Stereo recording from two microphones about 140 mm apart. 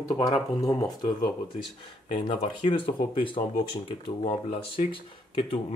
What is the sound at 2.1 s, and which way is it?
Speech, 40° left (ahead or behind).